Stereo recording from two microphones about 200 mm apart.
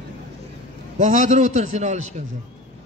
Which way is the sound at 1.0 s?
35° right (ahead or behind).